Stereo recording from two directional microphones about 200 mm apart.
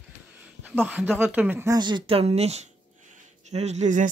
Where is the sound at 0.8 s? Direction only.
10° right (ahead or behind).